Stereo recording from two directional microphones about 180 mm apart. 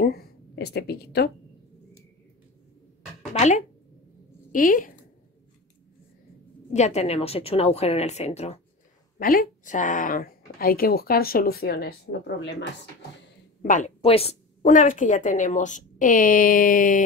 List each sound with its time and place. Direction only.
0.0 s speech: 60° left (ahead or behind)
3.3 s a woman's voice: 40° left (ahead or behind)
6.7 s a woman's voice: 40° left (ahead or behind)
9.2 s speech: 50° left (ahead or behind); by 12.6 s 75° left (ahead or behind)
13.6 s speech: 45° left (ahead or behind)
14.6 s speech: 45° left (ahead or behind)